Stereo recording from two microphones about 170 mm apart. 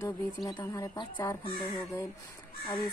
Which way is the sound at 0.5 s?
20° left (ahead or behind).